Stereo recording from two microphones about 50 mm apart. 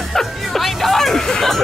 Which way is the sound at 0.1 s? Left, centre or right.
Centre.